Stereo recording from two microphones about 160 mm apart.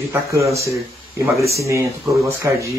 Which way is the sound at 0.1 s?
20° right (ahead or behind).